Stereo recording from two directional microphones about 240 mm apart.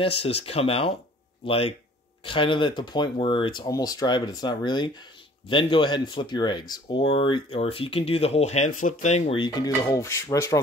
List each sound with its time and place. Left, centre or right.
0.0 s speech: left